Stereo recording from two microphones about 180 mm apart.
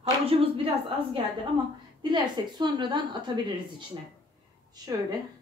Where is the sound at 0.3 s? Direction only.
30° right (ahead or behind).